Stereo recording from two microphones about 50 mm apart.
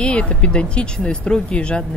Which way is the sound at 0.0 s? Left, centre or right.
Left.